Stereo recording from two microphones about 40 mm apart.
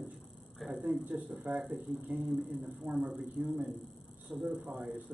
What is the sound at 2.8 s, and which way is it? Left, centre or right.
Speech, right.